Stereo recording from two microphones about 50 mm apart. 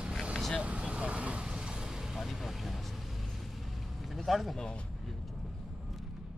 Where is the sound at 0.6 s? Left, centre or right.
Right.